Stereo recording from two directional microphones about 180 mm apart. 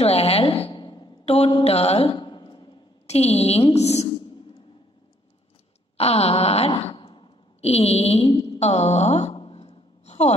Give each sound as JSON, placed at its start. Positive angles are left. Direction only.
{"t": 0.0, "sound": "a woman's voice", "side_deg": 35}
{"t": 5.9, "sound": "sigh", "side_deg": 35}